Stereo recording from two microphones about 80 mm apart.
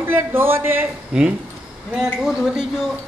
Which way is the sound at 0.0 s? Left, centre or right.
Right.